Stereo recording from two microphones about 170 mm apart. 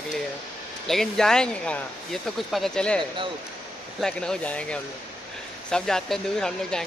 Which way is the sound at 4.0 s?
5° left (ahead or behind).